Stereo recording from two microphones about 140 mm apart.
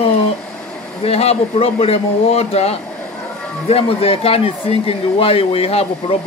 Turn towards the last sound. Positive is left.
turn(degrees=40)  # may be behind; listen again after turning